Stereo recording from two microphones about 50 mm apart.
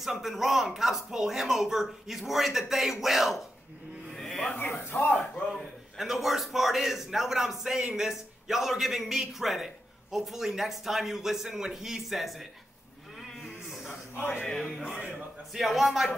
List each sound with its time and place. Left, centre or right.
0.0 s a man's voice: centre
4.1 s a sound: centre
4.6 s speech: left
5.5 s a man's voice: centre
13.4 s sheep: centre
14.1 s speech: left
14.8 s a man's voice: centre